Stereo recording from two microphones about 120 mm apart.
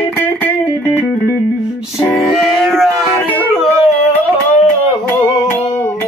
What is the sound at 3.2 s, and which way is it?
Music, 15° left (ahead or behind).